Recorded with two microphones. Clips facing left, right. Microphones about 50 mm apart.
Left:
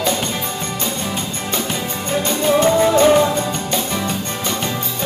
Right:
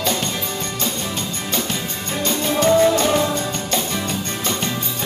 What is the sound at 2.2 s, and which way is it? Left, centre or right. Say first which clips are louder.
Music: left 2 dB; centre.